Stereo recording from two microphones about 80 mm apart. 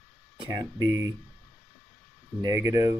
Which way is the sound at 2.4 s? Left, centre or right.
Right.